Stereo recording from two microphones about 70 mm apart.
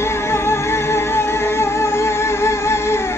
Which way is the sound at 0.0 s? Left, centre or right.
Left.